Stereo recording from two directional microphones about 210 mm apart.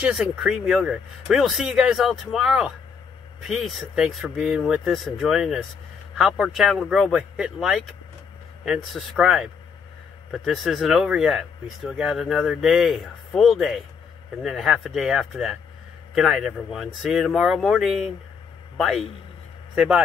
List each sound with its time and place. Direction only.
0.0 s speech: centre (ahead or behind)